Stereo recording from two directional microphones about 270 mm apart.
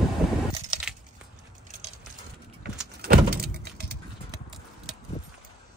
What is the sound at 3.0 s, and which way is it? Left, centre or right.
Vehicle, right.